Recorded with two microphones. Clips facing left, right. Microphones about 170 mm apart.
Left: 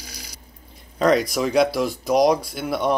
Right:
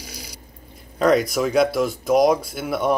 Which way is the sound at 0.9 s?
5° right (ahead or behind).